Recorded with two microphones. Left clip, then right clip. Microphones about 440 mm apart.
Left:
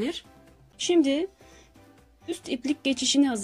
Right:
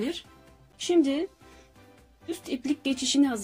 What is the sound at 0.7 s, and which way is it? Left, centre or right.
Speech, left.